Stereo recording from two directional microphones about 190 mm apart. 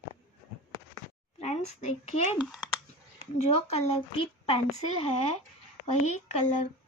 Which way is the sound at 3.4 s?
30° left (ahead or behind).